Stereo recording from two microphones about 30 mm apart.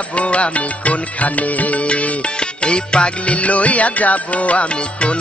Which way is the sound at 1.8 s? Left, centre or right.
Left.